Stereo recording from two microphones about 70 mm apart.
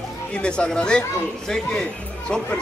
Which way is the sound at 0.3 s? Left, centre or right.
Centre.